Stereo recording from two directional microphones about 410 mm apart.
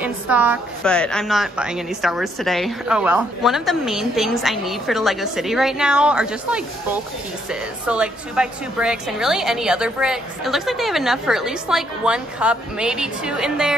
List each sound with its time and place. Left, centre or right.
0.0 s a woman's voice: centre